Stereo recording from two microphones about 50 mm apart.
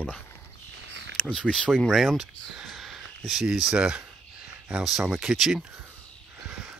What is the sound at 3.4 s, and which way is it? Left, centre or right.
Speech, centre.